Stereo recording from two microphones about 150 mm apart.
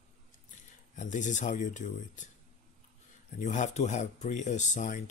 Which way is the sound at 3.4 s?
55° left (ahead or behind).